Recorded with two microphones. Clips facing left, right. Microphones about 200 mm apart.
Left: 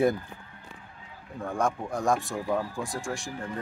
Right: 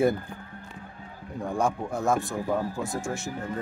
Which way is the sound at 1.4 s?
10° right (ahead or behind).